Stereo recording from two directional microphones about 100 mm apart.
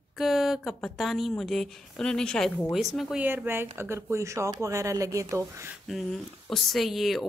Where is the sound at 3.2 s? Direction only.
20° right (ahead or behind).